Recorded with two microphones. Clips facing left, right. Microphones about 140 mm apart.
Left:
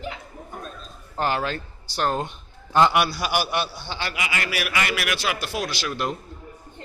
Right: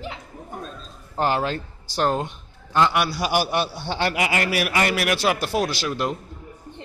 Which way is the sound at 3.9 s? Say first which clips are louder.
Right 6 dB; 55° right (ahead or behind).